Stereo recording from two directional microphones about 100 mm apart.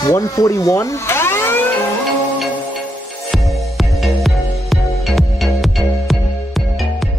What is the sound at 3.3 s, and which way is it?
Music, centre (ahead or behind).